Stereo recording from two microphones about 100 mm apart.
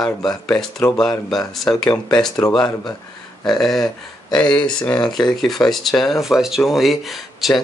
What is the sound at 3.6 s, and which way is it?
Speech, centre (ahead or behind).